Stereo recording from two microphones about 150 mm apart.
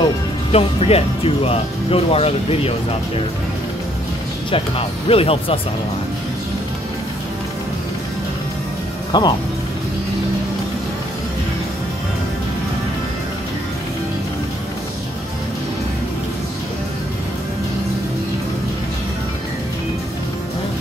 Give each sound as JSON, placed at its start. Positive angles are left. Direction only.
{"t": 0.5, "sound": "speech", "side_deg": 40}
{"t": 4.5, "sound": "speech", "side_deg": 35}
{"t": 9.1, "sound": "speech", "side_deg": 30}